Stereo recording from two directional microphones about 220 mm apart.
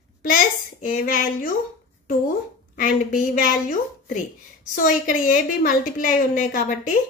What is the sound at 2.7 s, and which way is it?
A woman's voice, 35° left (ahead or behind).